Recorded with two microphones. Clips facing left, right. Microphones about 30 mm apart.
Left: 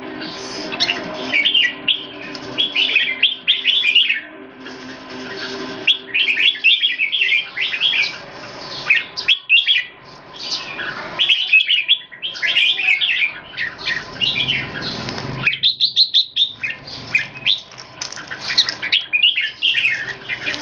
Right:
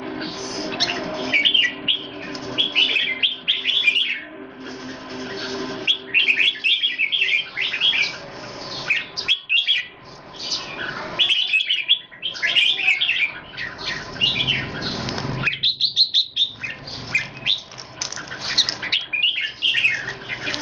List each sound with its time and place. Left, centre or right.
0.1 s bird: centre